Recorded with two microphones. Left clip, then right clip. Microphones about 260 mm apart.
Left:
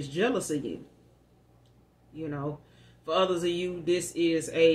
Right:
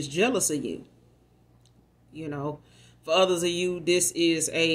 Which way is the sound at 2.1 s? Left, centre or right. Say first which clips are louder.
Right 2 dB; right.